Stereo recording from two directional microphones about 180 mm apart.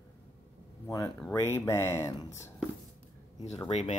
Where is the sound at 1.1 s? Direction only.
10° left (ahead or behind).